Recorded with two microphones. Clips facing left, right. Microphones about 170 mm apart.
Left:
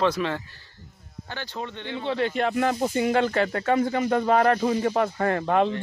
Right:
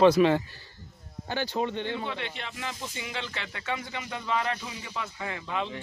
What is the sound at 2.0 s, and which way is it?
Speech, 40° left (ahead or behind).